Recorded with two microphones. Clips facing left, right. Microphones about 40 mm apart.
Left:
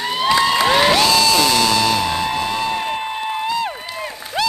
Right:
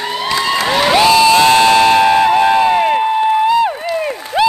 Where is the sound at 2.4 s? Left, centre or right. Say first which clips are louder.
Right 10 dB; right.